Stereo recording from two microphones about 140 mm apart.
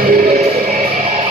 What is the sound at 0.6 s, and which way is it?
Music, 75° right (ahead or behind).